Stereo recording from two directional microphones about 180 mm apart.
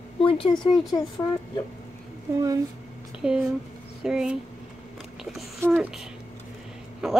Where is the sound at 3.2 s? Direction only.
5° right (ahead or behind).